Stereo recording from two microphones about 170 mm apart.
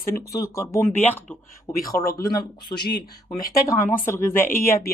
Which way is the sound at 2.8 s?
70° left (ahead or behind).